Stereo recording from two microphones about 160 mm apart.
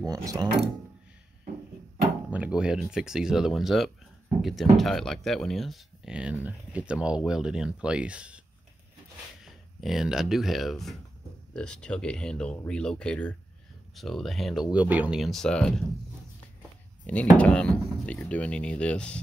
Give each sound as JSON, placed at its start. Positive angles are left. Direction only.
{"t": 0.0, "sound": "speech", "side_deg": -25}
{"t": 2.3, "sound": "speech", "side_deg": -10}
{"t": 9.4, "sound": "speech", "side_deg": 0}
{"t": 17.0, "sound": "speech", "side_deg": 10}